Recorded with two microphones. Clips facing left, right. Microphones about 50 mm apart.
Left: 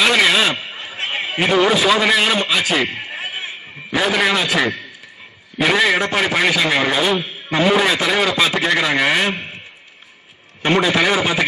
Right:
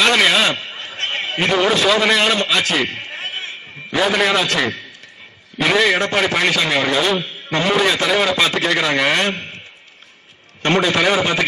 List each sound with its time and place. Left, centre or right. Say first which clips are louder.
0.0 s a man's voice: even; centre
10.6 s a man's voice: even; centre